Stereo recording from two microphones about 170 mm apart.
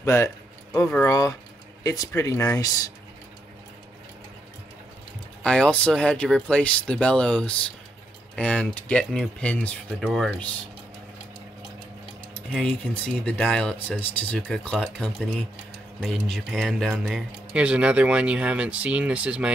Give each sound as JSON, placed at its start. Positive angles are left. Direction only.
{"t": 0.0, "sound": "speech", "side_deg": 15}
{"t": 5.4, "sound": "speech", "side_deg": 5}
{"t": 12.4, "sound": "speech", "side_deg": 5}